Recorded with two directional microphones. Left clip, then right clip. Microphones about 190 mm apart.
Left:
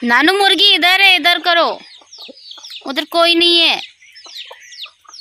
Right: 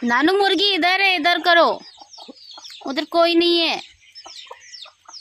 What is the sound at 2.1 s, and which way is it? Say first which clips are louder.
Chicken: left 7 dB; 45° right (ahead or behind).